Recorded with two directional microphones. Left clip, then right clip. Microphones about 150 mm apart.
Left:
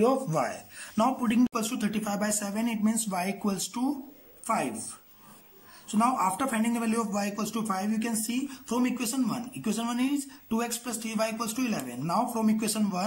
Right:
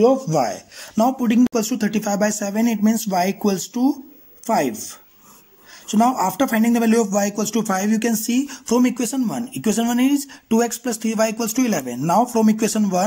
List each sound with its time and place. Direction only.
0.0 s a man's voice: 30° right (ahead or behind)
1.5 s speech: 45° right (ahead or behind)
5.9 s speech: 45° right (ahead or behind)